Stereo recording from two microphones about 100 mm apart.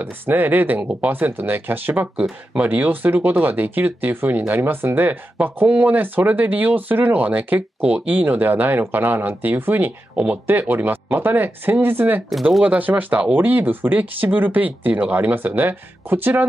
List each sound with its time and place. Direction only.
0.0 s speech: 20° right (ahead or behind)